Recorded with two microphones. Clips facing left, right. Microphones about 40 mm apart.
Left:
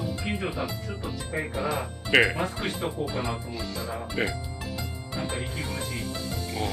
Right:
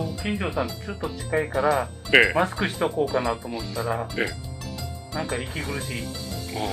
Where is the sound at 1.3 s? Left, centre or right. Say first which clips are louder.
Right 7 dB; right.